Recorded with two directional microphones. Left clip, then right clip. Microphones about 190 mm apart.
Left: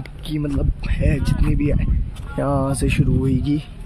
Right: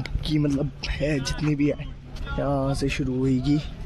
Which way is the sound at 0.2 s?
5° right (ahead or behind).